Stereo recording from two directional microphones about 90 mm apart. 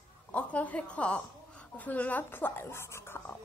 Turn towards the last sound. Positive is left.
turn(degrees=25)  # may be behind; listen again after turning